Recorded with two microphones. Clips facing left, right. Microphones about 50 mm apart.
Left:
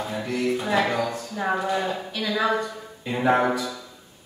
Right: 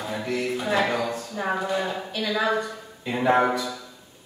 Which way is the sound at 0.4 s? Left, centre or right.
Centre.